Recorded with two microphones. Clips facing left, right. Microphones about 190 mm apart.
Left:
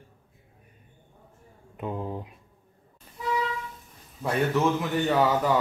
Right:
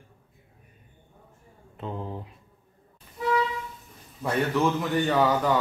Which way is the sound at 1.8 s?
10° left (ahead or behind).